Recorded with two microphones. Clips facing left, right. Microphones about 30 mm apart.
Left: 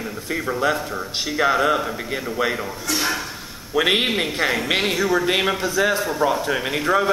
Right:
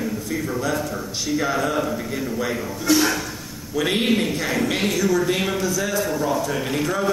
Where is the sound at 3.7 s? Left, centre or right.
Left.